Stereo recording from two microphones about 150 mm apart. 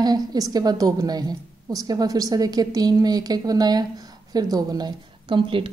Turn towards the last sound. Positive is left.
turn(degrees=-35)  # may be behind; listen again after turning